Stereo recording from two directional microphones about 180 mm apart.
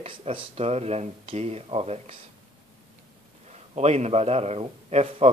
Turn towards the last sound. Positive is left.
turn(degrees=-35)  # may be behind; listen again after turning